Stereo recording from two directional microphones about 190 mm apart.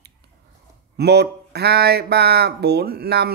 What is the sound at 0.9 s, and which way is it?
Speech, 60° right (ahead or behind).